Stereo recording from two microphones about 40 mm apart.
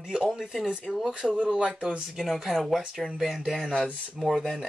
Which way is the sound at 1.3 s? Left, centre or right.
Right.